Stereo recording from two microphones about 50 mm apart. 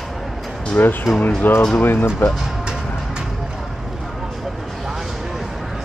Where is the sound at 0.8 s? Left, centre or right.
Left.